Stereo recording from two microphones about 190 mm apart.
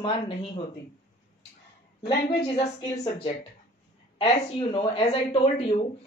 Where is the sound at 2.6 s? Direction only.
35° left (ahead or behind).